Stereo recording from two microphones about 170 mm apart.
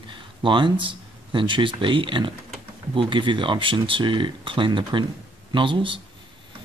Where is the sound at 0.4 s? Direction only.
30° right (ahead or behind).